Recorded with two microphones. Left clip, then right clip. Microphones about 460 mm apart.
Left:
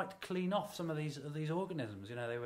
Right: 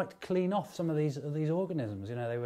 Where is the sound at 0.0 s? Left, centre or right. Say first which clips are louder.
Right 8 dB; right.